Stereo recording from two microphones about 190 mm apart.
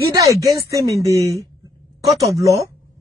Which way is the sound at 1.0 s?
15° right (ahead or behind).